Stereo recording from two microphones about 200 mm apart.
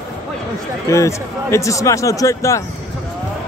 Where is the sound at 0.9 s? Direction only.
15° left (ahead or behind).